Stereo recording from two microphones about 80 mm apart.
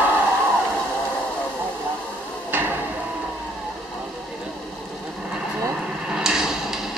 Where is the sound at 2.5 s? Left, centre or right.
Right.